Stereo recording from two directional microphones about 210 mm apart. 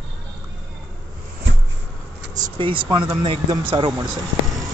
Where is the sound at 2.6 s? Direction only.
25° right (ahead or behind).